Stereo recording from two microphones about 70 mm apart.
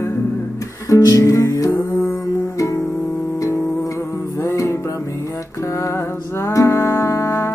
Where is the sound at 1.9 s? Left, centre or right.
Left.